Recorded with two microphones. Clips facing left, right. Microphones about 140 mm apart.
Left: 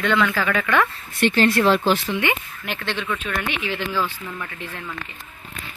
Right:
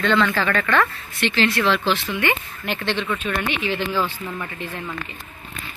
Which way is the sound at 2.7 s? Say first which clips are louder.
Right 3 dB; centre (ahead or behind).